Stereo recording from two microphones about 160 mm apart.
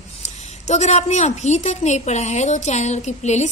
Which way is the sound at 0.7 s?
45° left (ahead or behind).